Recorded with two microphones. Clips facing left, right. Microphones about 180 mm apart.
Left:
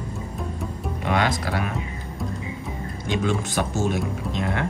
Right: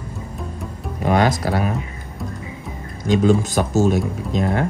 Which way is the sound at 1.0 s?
40° right (ahead or behind).